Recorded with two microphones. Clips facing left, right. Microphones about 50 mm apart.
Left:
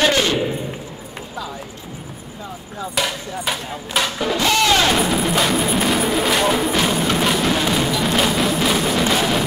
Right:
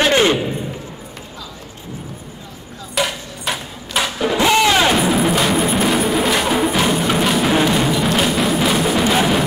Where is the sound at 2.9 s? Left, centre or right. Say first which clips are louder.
Right 2 dB; centre.